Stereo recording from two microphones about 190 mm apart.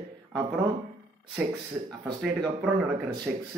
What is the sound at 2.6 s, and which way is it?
Speech, 20° right (ahead or behind).